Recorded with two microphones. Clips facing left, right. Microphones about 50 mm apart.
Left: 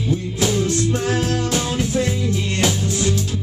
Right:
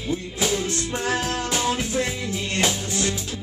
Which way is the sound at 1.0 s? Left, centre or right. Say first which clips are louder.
Left 4 dB; right.